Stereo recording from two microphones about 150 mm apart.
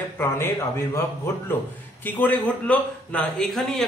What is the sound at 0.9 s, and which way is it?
Speech, 15° left (ahead or behind).